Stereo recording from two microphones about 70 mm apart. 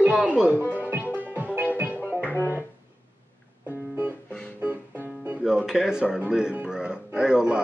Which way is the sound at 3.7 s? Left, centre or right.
Right.